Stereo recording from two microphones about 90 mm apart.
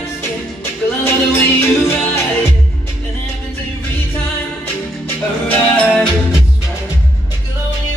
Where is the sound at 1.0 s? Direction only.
25° left (ahead or behind).